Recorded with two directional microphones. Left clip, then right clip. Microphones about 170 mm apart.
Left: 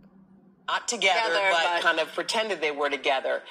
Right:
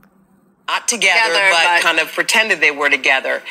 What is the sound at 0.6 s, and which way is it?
A woman's voice, 25° right (ahead or behind).